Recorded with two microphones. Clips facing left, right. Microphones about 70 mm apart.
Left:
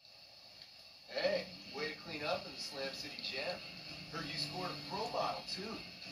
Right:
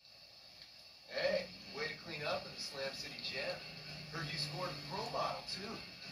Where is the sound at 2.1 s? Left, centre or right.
Right.